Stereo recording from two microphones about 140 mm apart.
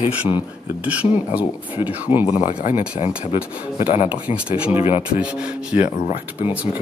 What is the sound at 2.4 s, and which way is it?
Speech, 55° left (ahead or behind).